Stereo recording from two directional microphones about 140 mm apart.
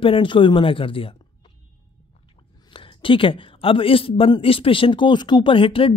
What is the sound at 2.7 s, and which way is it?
Speech, 40° left (ahead or behind).